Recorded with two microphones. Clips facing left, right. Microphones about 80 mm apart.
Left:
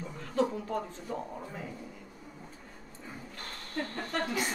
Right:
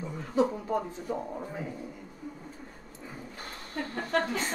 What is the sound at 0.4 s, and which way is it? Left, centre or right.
Speech, centre.